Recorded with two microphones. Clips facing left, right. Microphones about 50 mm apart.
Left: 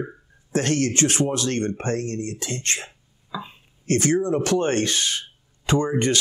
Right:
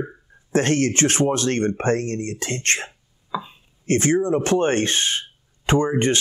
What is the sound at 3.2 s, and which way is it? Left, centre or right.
Speech, right.